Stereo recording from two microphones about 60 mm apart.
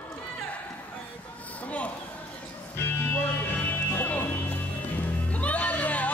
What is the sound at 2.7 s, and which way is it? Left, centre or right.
Music, left.